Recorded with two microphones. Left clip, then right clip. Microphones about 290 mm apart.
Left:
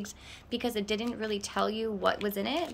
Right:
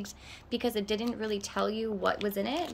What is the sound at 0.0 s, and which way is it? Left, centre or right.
Speech, centre.